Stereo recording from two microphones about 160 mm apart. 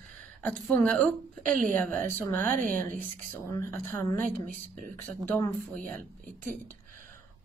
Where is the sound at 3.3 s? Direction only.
15° left (ahead or behind).